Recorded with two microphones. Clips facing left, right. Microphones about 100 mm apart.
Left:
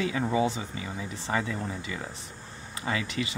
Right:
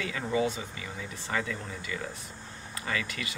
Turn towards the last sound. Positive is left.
turn(degrees=25)  # may be behind; listen again after turning